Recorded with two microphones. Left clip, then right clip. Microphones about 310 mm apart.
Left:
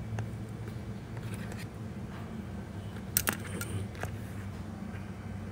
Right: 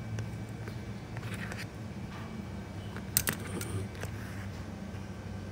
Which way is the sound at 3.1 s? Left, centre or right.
Centre.